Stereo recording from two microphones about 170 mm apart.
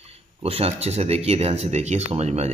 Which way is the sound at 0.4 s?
35° right (ahead or behind).